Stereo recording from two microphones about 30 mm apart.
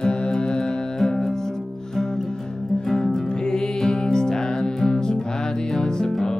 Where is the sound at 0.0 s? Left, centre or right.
Left; by 1.5 s centre.